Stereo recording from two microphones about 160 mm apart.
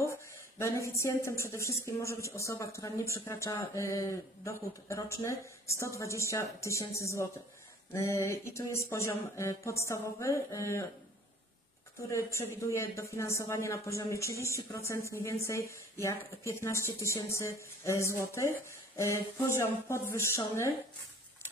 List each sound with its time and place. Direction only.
0.6 s speech: 20° left (ahead or behind)
12.0 s speech: 15° left (ahead or behind)